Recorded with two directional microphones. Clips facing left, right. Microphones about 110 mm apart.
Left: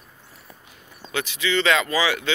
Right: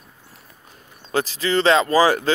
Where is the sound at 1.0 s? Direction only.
35° right (ahead or behind).